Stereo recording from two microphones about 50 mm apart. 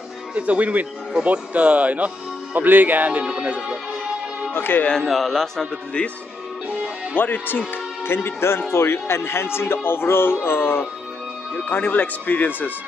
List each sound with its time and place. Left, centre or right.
0.3 s speech: right
4.6 s music: left
5.0 s speech: centre
6.0 s speech: left
7.2 s speech: left
8.0 s music: left
8.7 s speech: left
11.7 s speech: left